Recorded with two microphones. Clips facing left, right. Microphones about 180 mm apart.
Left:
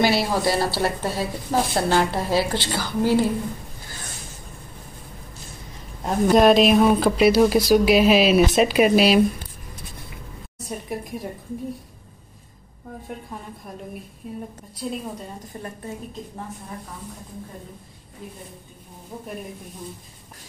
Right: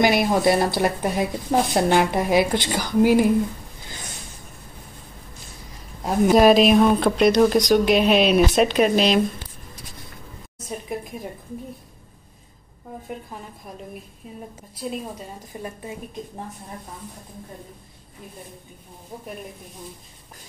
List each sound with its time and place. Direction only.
0.0 s a woman's voice: 15° right (ahead or behind)
6.0 s a woman's voice: 5° right (ahead or behind)
10.7 s a woman's voice: centre (ahead or behind)
14.8 s a woman's voice: 5° right (ahead or behind)